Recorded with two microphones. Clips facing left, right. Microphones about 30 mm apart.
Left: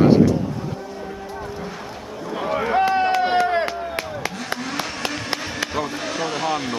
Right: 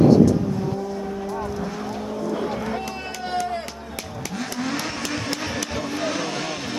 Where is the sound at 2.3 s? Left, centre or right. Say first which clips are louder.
Left 6 dB; left.